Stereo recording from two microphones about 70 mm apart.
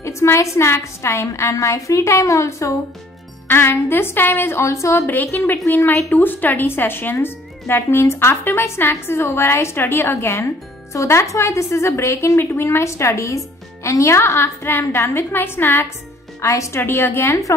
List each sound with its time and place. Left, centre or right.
0.0 s a woman's voice: left
3.4 s speech: left
5.0 s a woman's voice: left
16.3 s a woman's voice: left
16.8 s speech: left